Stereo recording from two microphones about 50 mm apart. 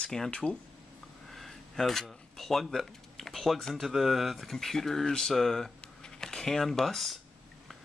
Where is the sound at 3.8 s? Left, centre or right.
Centre.